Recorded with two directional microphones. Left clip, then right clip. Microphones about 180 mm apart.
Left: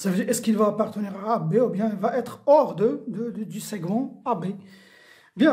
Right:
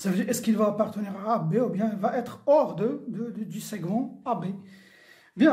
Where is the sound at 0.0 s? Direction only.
25° left (ahead or behind).